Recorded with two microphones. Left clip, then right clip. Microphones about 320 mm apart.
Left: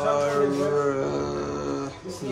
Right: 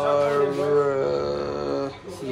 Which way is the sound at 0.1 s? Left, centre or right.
Centre.